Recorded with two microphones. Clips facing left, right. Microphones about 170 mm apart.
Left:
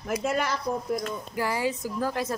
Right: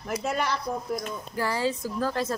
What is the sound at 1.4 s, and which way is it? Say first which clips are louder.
Speech: right 1 dB; 15° left (ahead or behind).